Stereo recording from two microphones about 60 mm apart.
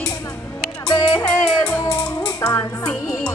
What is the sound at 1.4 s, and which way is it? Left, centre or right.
Music, centre.